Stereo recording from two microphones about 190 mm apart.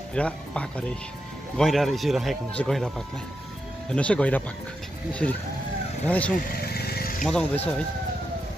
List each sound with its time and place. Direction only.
0.1 s speech: 5° left (ahead or behind)
3.9 s speech: 5° left (ahead or behind)
6.0 s speech: 5° left (ahead or behind)
6.5 s vehicle: 55° left (ahead or behind)
7.2 s speech: 5° left (ahead or behind)